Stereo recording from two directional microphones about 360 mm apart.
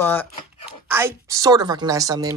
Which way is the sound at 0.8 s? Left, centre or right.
Centre.